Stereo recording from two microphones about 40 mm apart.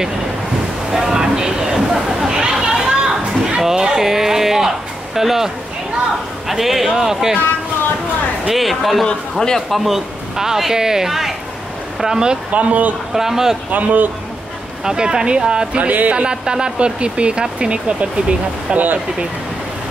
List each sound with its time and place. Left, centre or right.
0.9 s a sound: centre
2.6 s children playing: centre
3.6 s a man's voice: centre
8.5 s a man's voice: centre
12.5 s speech: right
13.1 s a man's voice: centre
13.7 s speech: right
14.9 s speech: right
15.8 s speech: right
16.2 s speech: right